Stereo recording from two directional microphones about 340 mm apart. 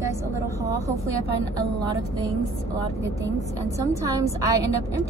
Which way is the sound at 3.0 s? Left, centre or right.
Centre.